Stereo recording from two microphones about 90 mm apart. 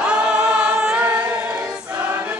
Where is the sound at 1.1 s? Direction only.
15° right (ahead or behind).